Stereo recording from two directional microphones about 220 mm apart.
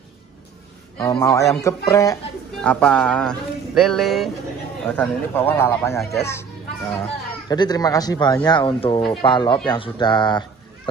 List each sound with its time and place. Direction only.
1.0 s speech: 15° left (ahead or behind)